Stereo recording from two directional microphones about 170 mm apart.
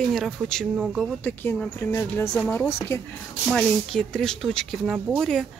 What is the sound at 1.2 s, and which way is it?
Speech, 10° left (ahead or behind).